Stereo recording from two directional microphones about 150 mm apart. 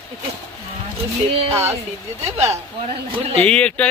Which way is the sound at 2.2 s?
45° right (ahead or behind).